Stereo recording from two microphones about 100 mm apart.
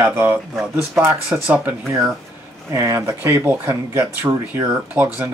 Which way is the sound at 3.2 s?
20° right (ahead or behind).